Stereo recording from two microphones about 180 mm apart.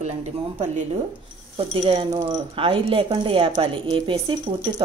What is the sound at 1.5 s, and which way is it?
Speech, 30° right (ahead or behind).